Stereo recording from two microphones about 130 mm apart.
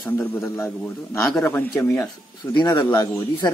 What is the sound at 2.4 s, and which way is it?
Speech, 30° left (ahead or behind).